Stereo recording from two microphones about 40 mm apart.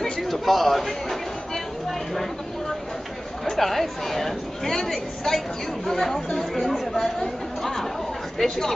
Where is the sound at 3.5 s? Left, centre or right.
Centre.